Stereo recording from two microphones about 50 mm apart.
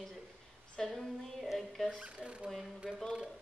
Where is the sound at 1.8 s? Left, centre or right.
Centre.